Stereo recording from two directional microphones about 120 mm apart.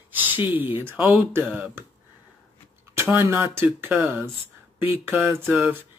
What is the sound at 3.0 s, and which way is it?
Speech, 20° right (ahead or behind).